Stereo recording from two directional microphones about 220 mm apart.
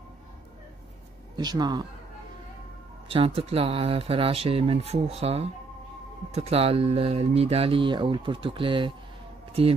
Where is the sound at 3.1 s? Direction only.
25° right (ahead or behind).